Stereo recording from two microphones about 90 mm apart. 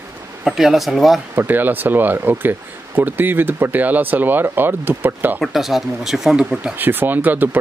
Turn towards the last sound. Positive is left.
turn(degrees=-20)  # may be behind; listen again after turning